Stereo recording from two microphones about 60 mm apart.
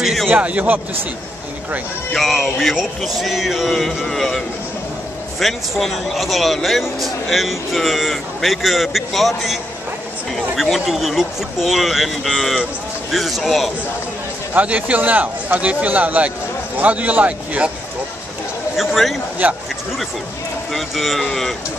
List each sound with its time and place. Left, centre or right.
0.0 s a sound: centre
0.3 s a man's voice: right
2.1 s speech: centre
5.4 s speech: centre
14.5 s a man's voice: right
18.8 s speech: centre
19.4 s a man's voice: right
20.7 s speech: centre